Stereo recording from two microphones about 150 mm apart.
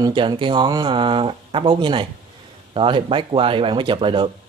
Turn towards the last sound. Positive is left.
turn(degrees=-35)  # may be behind; listen again after turning